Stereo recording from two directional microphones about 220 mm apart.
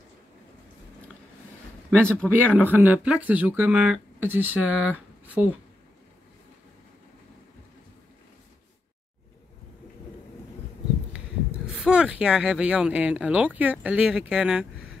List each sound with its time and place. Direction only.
1.9 s speech: 5° left (ahead or behind)
2.7 s speech: 5° right (ahead or behind)
11.1 s speech: 5° right (ahead or behind)